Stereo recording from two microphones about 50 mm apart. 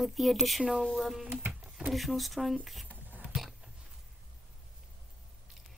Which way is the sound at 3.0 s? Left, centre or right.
Right.